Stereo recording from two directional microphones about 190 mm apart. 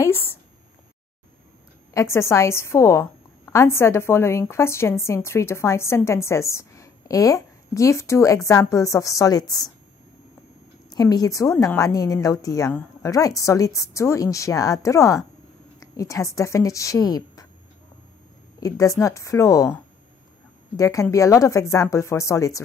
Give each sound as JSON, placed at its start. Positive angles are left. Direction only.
{"t": 0.0, "sound": "a sound", "side_deg": 10}
{"t": 2.0, "sound": "a woman's voice", "side_deg": 15}
{"t": 10.9, "sound": "a woman's voice", "side_deg": 20}
{"t": 18.6, "sound": "a woman's voice", "side_deg": 15}